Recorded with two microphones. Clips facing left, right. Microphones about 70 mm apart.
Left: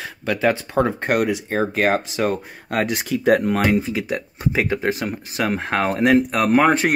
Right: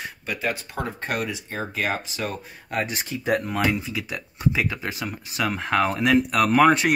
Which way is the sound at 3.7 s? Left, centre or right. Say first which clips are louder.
Left 8 dB; left.